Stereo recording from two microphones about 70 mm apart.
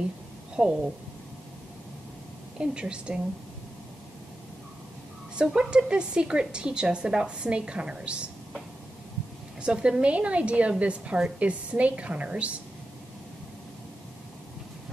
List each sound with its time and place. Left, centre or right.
0.6 s speech: centre
2.6 s speech: centre
5.3 s speech: centre
9.6 s speech: centre